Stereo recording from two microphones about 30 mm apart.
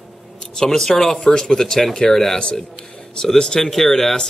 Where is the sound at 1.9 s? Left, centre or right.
Left.